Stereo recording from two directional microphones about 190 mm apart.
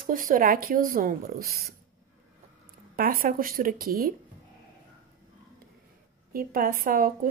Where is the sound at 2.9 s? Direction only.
50° right (ahead or behind).